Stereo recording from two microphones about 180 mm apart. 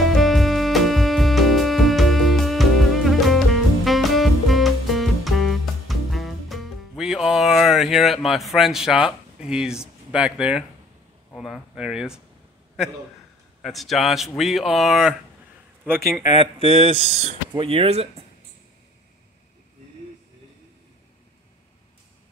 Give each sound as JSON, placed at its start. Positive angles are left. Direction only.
{"t": 0.1, "sound": "music", "side_deg": 0}
{"t": 11.3, "sound": "speech", "side_deg": 0}
{"t": 13.6, "sound": "speech", "side_deg": 0}
{"t": 15.8, "sound": "speech", "side_deg": -15}